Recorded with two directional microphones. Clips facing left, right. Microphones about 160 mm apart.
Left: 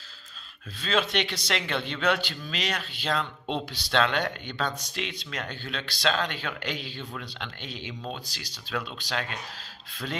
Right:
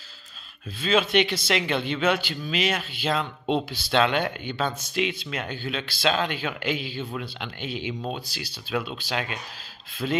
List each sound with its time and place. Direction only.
0.7 s speech: 5° right (ahead or behind)